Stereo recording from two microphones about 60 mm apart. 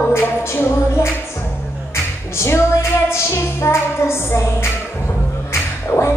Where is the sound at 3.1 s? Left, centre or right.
Left.